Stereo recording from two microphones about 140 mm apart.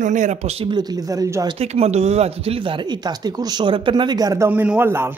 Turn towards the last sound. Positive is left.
turn(degrees=-15)  # may be behind; listen again after turning